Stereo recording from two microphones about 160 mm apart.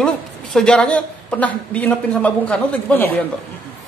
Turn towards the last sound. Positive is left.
turn(degrees=10)  # may be behind; listen again after turning